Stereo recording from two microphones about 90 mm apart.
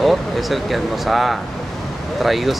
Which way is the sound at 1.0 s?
Centre (ahead or behind).